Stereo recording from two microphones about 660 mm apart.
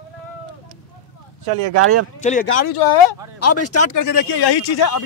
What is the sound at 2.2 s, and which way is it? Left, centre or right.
Speech, centre.